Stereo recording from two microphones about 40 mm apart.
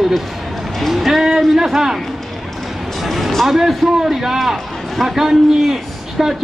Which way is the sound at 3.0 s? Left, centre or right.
Centre.